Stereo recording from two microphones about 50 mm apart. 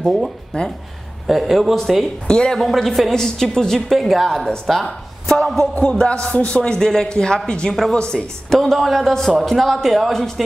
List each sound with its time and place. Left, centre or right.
0.5 s a man's voice: centre
1.2 s a man's voice: centre
2.2 s a man's voice: centre
2.6 s a man's voice: centre
4.8 s a man's voice: centre
8.5 s a man's voice: centre